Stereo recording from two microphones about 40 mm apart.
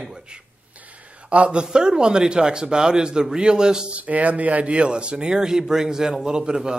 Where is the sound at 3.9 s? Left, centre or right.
Right.